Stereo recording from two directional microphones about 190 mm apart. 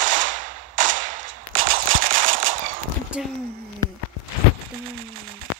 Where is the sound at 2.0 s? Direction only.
45° right (ahead or behind).